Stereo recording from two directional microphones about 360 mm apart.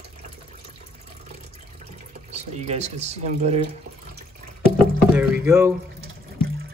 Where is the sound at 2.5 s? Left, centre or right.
Centre.